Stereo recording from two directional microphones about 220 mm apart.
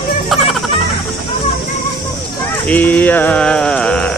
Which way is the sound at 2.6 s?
5° left (ahead or behind).